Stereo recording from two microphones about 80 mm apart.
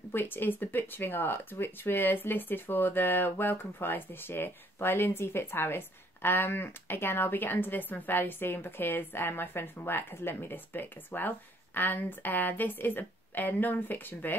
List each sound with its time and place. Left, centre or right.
0.1 s speech: left